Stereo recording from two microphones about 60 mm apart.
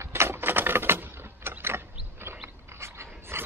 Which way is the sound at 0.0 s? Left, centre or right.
Right.